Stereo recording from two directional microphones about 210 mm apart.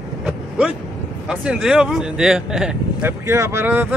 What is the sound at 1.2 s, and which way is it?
Speech, 5° right (ahead or behind).